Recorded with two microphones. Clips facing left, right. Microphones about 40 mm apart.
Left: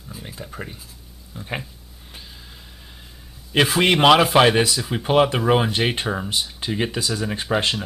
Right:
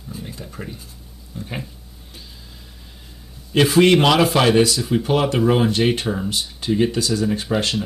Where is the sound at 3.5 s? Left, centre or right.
Centre.